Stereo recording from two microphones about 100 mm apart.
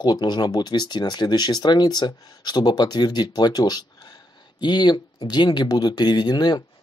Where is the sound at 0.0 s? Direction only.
45° left (ahead or behind).